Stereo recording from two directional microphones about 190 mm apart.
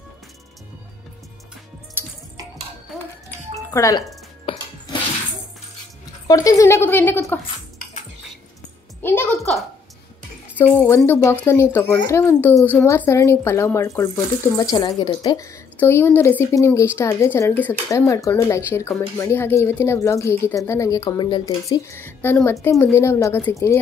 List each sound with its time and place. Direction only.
3.7 s speech: 15° left (ahead or behind)
6.2 s speech: 20° left (ahead or behind)
9.0 s a woman's voice: 10° left (ahead or behind)
10.6 s speech: 10° left (ahead or behind)